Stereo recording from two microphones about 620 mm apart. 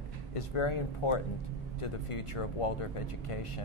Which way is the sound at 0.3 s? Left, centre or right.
Left.